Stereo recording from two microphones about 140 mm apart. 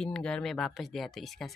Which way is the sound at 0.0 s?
5° left (ahead or behind).